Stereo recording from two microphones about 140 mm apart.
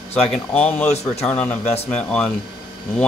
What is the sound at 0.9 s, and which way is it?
Speech, 50° left (ahead or behind).